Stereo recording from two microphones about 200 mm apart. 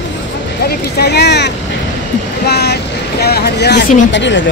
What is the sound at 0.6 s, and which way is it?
Speech, 55° left (ahead or behind).